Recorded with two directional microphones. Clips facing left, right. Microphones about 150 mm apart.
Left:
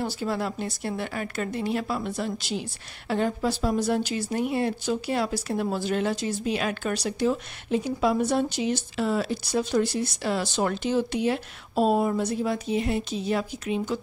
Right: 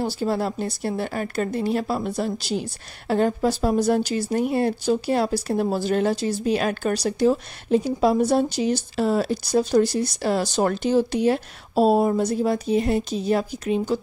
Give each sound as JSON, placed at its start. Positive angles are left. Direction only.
{"t": 0.0, "sound": "a woman's voice", "side_deg": -35}